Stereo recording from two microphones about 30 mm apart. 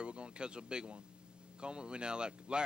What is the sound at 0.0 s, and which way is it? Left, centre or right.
Speech, right.